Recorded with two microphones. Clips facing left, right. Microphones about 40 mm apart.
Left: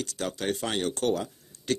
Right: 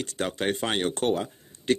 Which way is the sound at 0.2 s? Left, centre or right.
Right.